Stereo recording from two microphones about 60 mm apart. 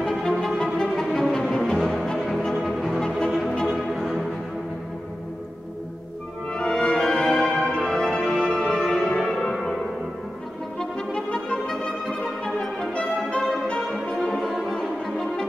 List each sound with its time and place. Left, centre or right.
0.1 s music: centre
6.5 s music: centre
10.8 s music: centre